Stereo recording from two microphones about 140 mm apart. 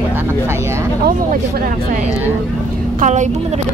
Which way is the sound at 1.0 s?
80° right.